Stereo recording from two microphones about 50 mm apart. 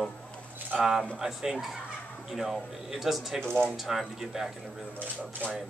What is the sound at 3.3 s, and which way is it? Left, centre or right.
Speech, centre.